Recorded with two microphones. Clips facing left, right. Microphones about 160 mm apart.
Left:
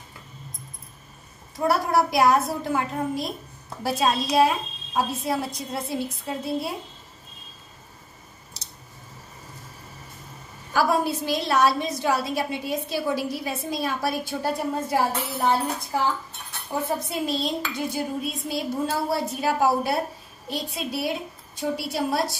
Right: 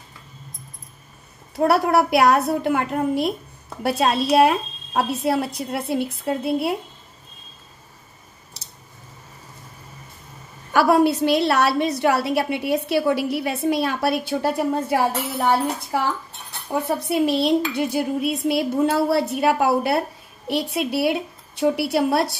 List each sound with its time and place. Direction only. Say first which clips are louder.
1.7 s a woman's voice: right 4 dB; 65° right (ahead or behind)
10.7 s a woman's voice: right 6 dB; 65° right (ahead or behind)
16.8 s a woman's voice: right 7 dB; 65° right (ahead or behind)